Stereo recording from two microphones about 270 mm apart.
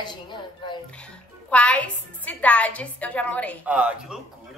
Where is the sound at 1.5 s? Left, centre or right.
Centre.